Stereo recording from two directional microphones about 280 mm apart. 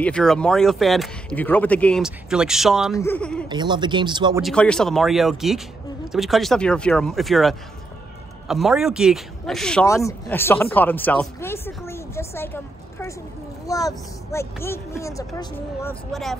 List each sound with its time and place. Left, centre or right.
0.0 s speech: centre
3.4 s speech: centre
4.4 s speech: centre